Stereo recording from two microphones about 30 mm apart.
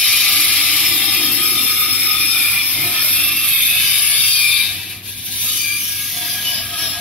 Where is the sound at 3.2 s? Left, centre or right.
Left.